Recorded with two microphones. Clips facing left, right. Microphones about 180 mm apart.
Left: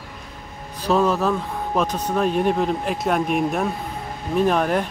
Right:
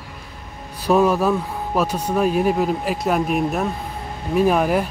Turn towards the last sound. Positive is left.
turn(degrees=-5)  # may be behind; listen again after turning